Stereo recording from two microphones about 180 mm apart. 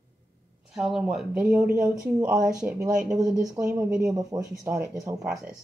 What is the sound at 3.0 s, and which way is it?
Speech, 20° right (ahead or behind).